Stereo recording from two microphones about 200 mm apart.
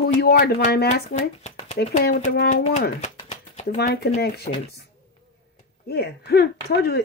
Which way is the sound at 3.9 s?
50° left (ahead or behind).